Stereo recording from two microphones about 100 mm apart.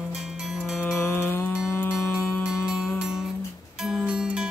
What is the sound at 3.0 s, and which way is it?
Music, 5° right (ahead or behind).